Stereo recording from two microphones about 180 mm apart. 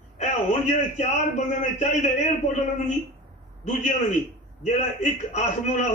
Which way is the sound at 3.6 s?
40° left (ahead or behind).